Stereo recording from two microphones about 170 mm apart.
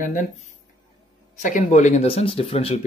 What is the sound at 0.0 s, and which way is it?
Speech, 50° left (ahead or behind).